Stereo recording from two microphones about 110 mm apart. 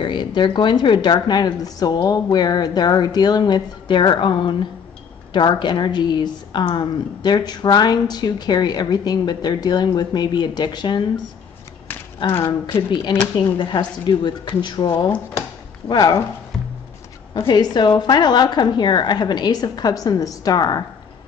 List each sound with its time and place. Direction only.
0.0 s a woman's voice: 45° left (ahead or behind)
12.2 s a woman's voice: 45° left (ahead or behind)
13.4 s a woman's voice: 45° left (ahead or behind)
17.5 s a woman's voice: 45° left (ahead or behind)